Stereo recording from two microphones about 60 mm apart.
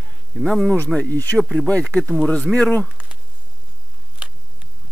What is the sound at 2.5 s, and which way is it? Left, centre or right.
Speech, right.